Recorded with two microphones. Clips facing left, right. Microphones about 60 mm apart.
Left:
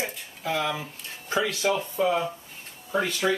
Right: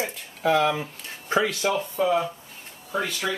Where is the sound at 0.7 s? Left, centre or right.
Right.